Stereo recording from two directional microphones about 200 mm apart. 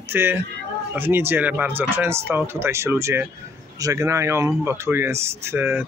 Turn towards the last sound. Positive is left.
turn(degrees=-10)  # may be behind; listen again after turning